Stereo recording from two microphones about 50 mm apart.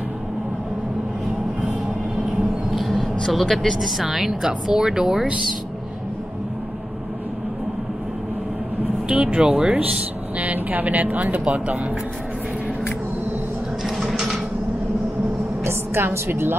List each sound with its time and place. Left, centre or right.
2.7 s speech: centre
9.0 s speech: centre
10.3 s speech: right
13.8 s a sound: centre
15.6 s a woman's voice: right